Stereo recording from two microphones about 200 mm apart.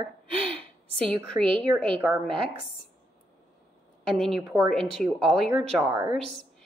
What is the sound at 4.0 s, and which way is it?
A woman's voice, 5° left (ahead or behind).